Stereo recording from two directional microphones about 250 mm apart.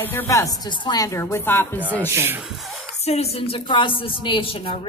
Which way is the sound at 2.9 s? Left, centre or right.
Left.